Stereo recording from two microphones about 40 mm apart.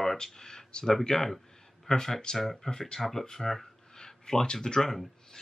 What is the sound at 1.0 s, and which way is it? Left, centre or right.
Speech, centre.